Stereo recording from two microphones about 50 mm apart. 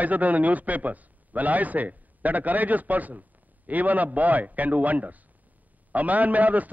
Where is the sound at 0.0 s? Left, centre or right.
Right.